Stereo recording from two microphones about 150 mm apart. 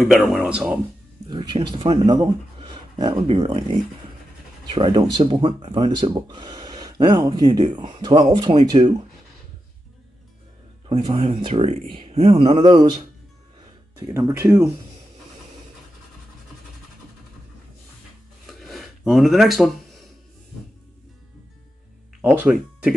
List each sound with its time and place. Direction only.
0.0 s speech: centre (ahead or behind)
1.3 s speech: 30° right (ahead or behind)
4.7 s speech: 30° right (ahead or behind)
10.9 s speech: 30° right (ahead or behind)
11.4 s speech: 40° right (ahead or behind)
14.1 s speech: 15° right (ahead or behind)
18.5 s a sound: centre (ahead or behind)
22.2 s speech: 10° right (ahead or behind)